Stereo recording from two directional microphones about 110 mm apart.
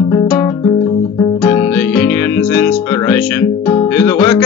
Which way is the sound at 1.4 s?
25° left (ahead or behind).